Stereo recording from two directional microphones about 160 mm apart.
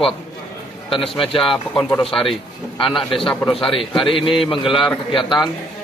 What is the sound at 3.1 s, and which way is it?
A man's voice, 30° left (ahead or behind).